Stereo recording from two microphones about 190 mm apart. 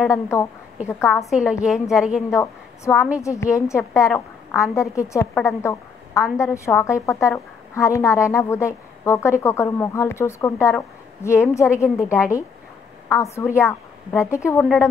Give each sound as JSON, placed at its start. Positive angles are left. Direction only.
{"t": 0.1, "sound": "a woman's voice", "side_deg": 15}
{"t": 1.3, "sound": "a woman's voice", "side_deg": -5}
{"t": 2.3, "sound": "a woman's voice", "side_deg": 15}
{"t": 5.6, "sound": "a sound", "side_deg": 15}
{"t": 6.3, "sound": "a woman's voice", "side_deg": 15}